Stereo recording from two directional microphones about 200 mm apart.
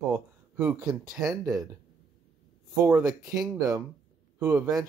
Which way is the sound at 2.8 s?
15° right (ahead or behind).